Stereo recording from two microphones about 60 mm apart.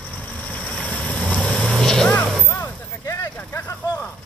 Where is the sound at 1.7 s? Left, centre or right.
Centre.